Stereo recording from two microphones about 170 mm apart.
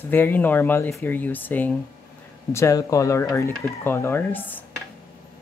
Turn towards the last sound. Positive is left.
turn(degrees=10)  # may be behind; listen again after turning